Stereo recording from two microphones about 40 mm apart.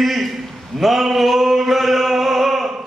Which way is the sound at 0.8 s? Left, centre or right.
Centre.